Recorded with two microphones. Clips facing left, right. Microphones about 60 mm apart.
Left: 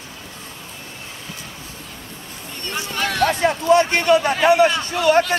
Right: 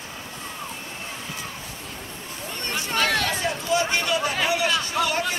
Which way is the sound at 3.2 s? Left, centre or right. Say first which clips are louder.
Left 8 dB; left.